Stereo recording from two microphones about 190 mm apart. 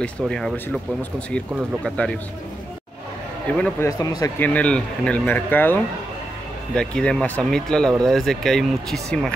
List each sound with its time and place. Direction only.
0.2 s speech: centre (ahead or behind)
1.9 s speech: 5° left (ahead or behind)
3.5 s speech: 5° left (ahead or behind)
4.0 s speech: 20° left (ahead or behind)
4.6 s speech: 5° left (ahead or behind)